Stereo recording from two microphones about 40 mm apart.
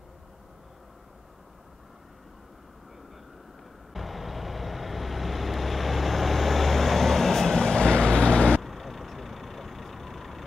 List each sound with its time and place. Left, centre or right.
3.9 s vehicle: centre
7.5 s vehicle: centre
8.6 s vehicle: centre